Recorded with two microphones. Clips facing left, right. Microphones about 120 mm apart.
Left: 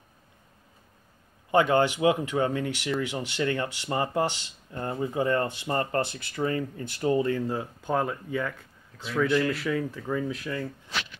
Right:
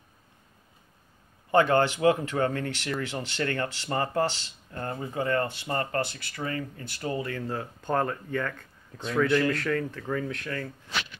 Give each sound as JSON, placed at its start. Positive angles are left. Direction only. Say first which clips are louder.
{"t": 1.5, "sound": "speech", "louder": "even", "side_deg": 15}
{"t": 7.4, "sound": "speech", "louder": "left 2 dB", "side_deg": 10}